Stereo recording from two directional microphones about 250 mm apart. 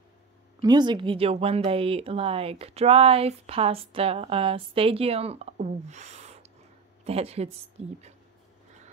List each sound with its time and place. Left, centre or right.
0.6 s speech: centre